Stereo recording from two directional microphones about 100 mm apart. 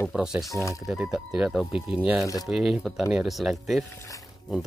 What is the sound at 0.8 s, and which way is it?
Speech, 10° right (ahead or behind).